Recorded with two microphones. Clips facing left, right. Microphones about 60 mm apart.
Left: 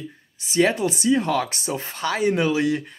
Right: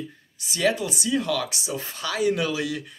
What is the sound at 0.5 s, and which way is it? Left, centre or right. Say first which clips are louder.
Speech: left 4 dB; left.